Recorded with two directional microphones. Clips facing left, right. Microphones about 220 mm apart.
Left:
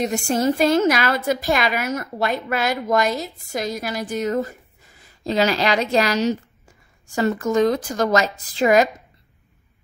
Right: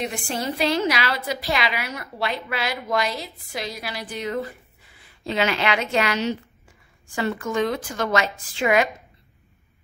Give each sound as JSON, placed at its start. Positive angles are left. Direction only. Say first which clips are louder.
{"t": 0.0, "sound": "a woman's voice", "louder": "left 7 dB", "side_deg": 45}